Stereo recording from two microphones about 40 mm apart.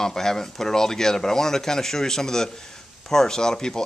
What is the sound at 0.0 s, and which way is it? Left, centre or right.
Speech, centre.